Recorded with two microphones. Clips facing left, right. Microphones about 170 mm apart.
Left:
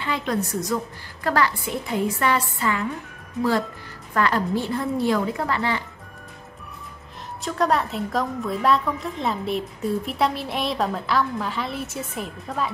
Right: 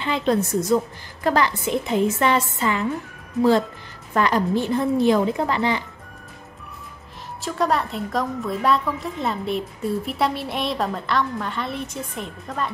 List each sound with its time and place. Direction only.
0.0 s a woman's voice: 25° right (ahead or behind)
4.1 s a woman's voice: 20° right (ahead or behind)
7.4 s a woman's voice: centre (ahead or behind)